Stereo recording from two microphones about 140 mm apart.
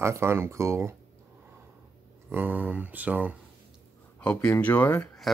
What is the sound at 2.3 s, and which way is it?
Speech, 15° right (ahead or behind).